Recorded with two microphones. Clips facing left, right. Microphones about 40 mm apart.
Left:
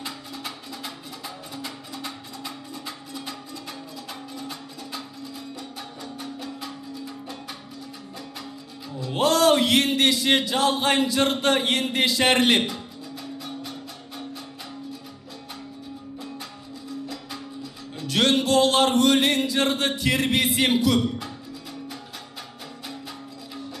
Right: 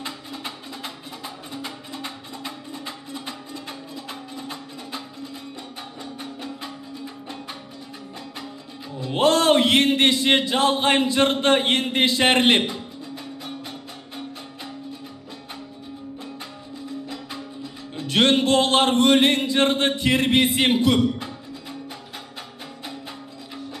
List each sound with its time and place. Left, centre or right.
0.0 s music: right
4.4 s a sound: right
6.1 s music: right
9.0 s a man's voice: right
17.9 s music: right